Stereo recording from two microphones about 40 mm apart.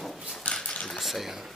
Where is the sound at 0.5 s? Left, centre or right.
Left.